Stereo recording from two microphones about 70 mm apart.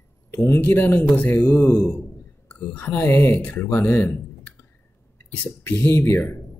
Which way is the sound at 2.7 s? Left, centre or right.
Left.